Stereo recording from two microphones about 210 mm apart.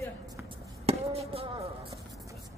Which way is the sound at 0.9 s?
30° right (ahead or behind).